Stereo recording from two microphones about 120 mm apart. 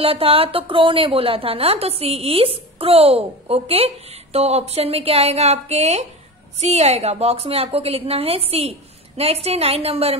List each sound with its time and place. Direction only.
0.0 s a woman's voice: 50° right (ahead or behind)